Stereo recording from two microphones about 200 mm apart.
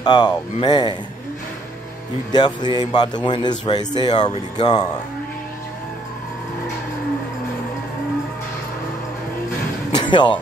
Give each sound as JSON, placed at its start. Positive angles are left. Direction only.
{"t": 0.0, "sound": "speech", "side_deg": 20}
{"t": 2.3, "sound": "speech", "side_deg": 20}
{"t": 9.9, "sound": "speech", "side_deg": 25}